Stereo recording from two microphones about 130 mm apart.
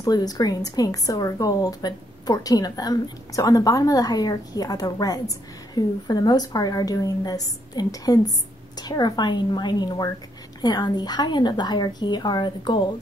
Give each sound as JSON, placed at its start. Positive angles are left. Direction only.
{"t": 0.0, "sound": "a woman's voice", "side_deg": 30}